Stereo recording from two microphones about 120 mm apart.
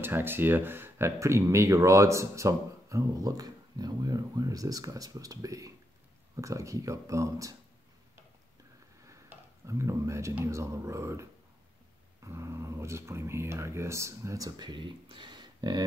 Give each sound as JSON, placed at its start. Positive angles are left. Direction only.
{"t": 0.0, "sound": "speech", "side_deg": -15}
{"t": 9.0, "sound": "a sound", "side_deg": -25}
{"t": 10.4, "sound": "speech", "side_deg": -25}